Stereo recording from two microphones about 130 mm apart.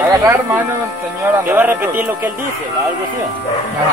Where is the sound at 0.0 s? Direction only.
15° right (ahead or behind).